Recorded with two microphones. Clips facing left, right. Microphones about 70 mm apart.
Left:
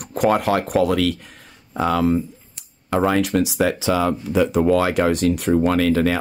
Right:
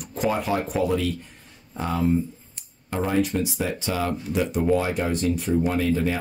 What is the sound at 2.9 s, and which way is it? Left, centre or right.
Speech, left.